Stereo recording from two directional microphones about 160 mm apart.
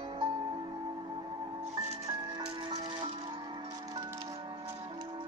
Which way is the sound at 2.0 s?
25° right (ahead or behind).